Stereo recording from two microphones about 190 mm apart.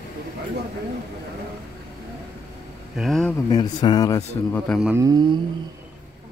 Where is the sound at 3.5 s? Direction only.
25° left (ahead or behind).